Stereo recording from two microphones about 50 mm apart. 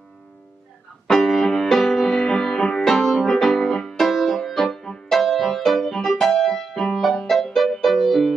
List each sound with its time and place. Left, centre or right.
1.0 s music: centre